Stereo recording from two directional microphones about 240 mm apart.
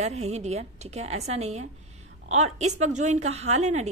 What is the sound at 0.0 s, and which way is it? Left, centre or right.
A woman's voice, right.